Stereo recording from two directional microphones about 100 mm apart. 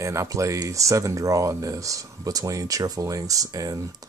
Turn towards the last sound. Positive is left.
turn(degrees=-35)  # may be behind; listen again after turning